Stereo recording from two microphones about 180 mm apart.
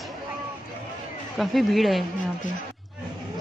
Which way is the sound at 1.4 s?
Centre (ahead or behind).